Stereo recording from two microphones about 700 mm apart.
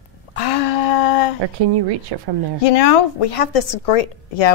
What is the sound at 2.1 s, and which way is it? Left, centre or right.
Speech, right.